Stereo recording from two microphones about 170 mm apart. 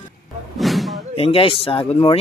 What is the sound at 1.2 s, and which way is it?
Speech, 30° left (ahead or behind).